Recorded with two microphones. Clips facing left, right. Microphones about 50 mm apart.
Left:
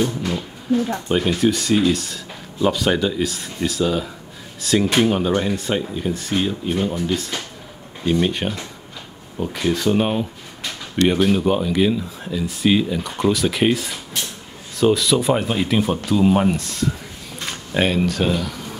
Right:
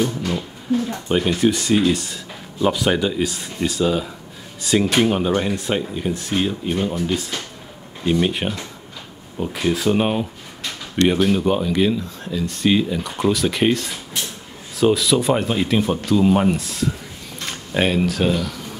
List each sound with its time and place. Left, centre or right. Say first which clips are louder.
0.2 s speech: even; centre